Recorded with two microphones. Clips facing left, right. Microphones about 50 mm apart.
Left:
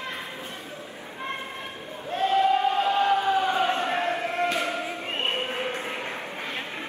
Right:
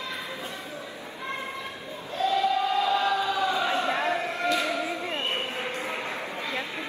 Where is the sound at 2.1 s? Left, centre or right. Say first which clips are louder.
Left 3 dB; left.